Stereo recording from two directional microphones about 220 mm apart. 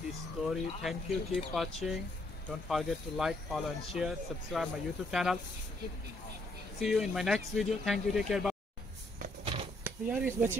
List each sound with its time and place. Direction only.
0.1 s speech: centre (ahead or behind)
6.8 s speech: centre (ahead or behind)
9.2 s a sound: 25° right (ahead or behind)
9.8 s speech: 10° right (ahead or behind)